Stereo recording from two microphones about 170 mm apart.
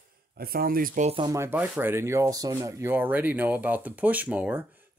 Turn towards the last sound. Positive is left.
turn(degrees=-10)  # may be behind; listen again after turning